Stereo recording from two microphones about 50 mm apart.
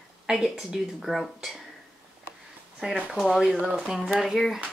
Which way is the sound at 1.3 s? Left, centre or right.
Centre.